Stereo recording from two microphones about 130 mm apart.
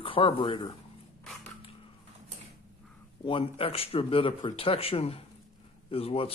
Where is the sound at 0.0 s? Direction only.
40° left (ahead or behind).